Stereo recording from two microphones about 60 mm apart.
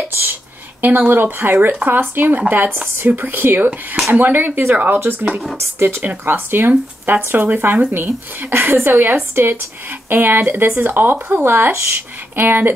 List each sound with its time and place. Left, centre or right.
0.1 s a woman's voice: right
5.6 s a woman's voice: right